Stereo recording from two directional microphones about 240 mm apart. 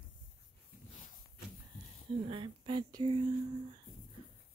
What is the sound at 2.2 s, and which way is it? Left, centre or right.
Speech, right.